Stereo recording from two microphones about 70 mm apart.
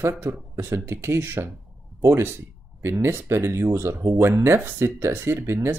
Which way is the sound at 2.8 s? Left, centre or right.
Right.